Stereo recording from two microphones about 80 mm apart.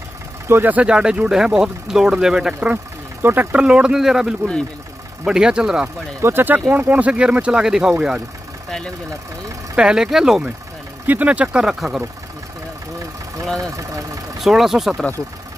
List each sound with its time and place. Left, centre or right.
0.5 s speech: right
3.2 s speech: right
3.5 s speech: centre
6.2 s speech: right; by 7.9 s centre
8.6 s speech: centre
9.8 s speech: centre
11.1 s speech: centre
13.6 s speech: right
14.4 s speech: centre